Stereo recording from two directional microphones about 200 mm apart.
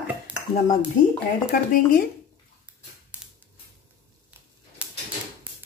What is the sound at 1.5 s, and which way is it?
Speech, 45° left (ahead or behind).